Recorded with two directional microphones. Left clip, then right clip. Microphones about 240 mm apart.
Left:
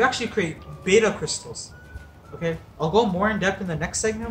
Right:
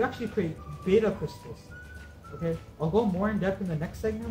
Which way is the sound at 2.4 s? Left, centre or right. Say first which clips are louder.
Left 6 dB; centre.